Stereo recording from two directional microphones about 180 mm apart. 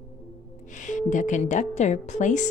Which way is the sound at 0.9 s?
45° left (ahead or behind).